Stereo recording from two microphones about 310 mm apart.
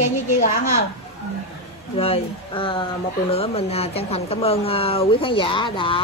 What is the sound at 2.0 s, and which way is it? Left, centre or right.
Speech, centre.